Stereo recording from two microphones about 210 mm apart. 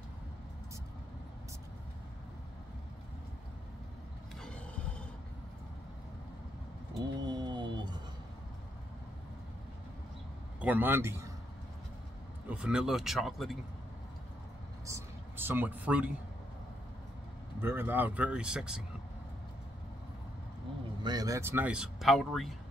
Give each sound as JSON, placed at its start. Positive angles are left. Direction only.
{"t": 4.4, "sound": "vehicle", "side_deg": 5}
{"t": 7.0, "sound": "a sound", "side_deg": -20}
{"t": 10.6, "sound": "a man's voice", "side_deg": -10}
{"t": 12.4, "sound": "speech", "side_deg": -5}
{"t": 14.9, "sound": "a man's voice", "side_deg": -10}
{"t": 17.6, "sound": "speech", "side_deg": -10}
{"t": 21.0, "sound": "speech", "side_deg": -20}